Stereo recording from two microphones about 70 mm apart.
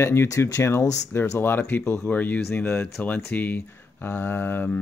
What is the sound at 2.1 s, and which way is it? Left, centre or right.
Speech, left.